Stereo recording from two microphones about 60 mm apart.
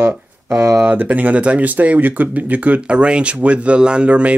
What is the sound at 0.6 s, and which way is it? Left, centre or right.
Speech, right.